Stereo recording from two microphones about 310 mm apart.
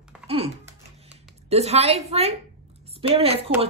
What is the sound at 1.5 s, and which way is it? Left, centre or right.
A woman's voice, centre.